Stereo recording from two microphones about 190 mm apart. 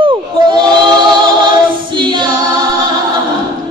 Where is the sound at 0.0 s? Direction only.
25° right (ahead or behind).